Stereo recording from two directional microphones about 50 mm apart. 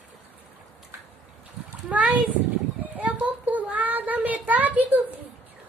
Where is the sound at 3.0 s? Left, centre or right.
Right.